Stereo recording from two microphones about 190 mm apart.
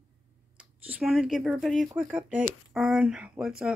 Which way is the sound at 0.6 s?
5° right (ahead or behind).